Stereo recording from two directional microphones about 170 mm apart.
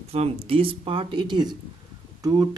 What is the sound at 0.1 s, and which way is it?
Speech, 35° right (ahead or behind).